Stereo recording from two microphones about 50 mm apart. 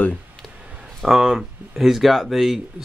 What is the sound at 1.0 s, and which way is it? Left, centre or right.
Speech, centre.